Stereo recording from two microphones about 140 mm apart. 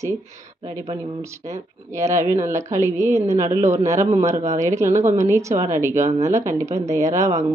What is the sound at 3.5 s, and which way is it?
Speech, 20° right (ahead or behind).